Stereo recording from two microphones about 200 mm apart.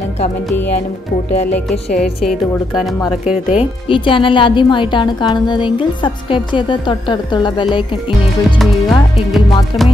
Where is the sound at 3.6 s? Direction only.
25° left (ahead or behind).